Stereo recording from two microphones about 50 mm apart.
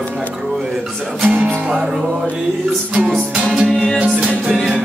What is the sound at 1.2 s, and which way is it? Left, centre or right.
Music, right.